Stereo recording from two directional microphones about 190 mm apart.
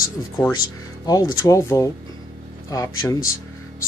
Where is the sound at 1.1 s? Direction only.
20° left (ahead or behind).